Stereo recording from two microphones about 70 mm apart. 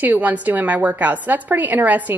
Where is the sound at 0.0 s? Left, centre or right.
Right.